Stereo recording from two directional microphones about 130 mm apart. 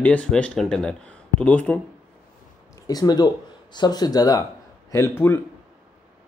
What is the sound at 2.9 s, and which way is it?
Speech, 30° left (ahead or behind).